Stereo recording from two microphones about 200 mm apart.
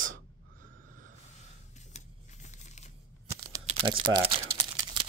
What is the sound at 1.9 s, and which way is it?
Crumpling, 35° left (ahead or behind).